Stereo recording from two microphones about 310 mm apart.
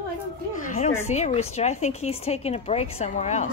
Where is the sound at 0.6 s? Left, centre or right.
Left.